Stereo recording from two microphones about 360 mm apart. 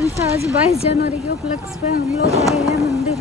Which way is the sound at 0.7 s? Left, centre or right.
Centre.